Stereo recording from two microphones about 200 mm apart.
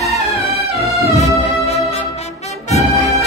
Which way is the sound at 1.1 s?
30° left (ahead or behind).